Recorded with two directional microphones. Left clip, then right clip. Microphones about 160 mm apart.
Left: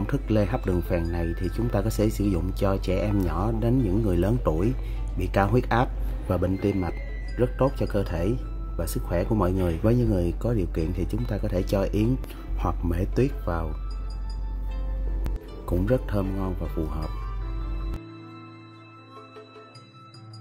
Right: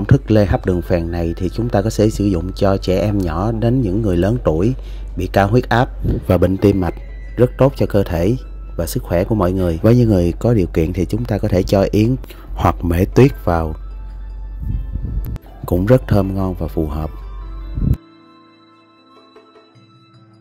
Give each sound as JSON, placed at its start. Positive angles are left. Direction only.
{"t": 0.0, "sound": "speech", "side_deg": -40}
{"t": 6.2, "sound": "speech", "side_deg": -55}
{"t": 9.9, "sound": "speech", "side_deg": -55}
{"t": 15.6, "sound": "speech", "side_deg": -55}